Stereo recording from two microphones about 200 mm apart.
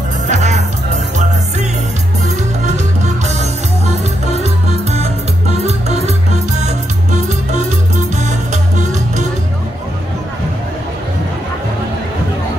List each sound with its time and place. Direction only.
0.3 s music: 35° right (ahead or behind)
2.2 s music: 35° right (ahead or behind)
3.8 s music: 35° right (ahead or behind)